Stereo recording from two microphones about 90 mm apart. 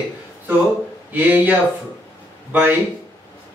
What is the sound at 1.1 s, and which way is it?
A man's voice, 20° right (ahead or behind).